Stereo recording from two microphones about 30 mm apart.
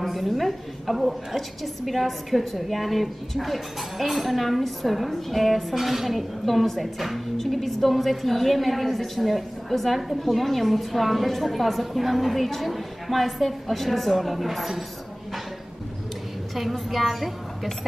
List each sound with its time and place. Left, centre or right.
0.0 s a woman's voice: centre
16.5 s a woman's voice: centre